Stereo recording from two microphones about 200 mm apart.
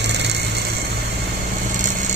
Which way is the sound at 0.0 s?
60° right (ahead or behind).